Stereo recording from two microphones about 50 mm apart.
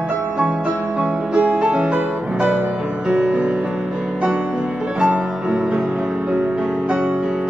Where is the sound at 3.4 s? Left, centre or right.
Centre.